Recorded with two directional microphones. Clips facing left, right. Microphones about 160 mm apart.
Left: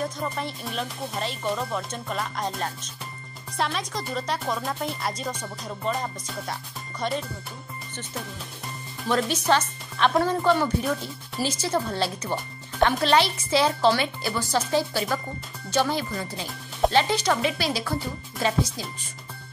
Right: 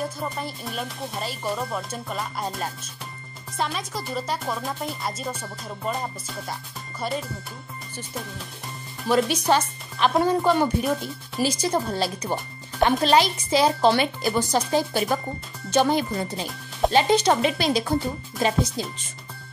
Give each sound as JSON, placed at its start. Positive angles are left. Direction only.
{"t": 0.0, "sound": "speech", "side_deg": -5}
{"t": 9.1, "sound": "speech", "side_deg": -10}